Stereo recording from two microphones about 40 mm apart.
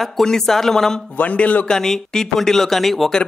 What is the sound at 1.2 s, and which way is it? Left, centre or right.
Speech, left.